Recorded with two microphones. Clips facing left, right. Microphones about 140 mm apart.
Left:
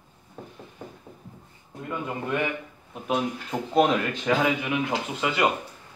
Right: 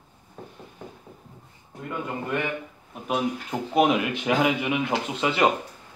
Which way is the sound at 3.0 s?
5° right (ahead or behind).